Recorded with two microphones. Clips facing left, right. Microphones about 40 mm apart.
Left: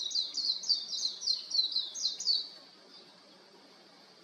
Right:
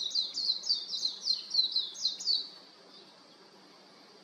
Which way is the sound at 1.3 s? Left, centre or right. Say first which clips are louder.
Right 2 dB; right.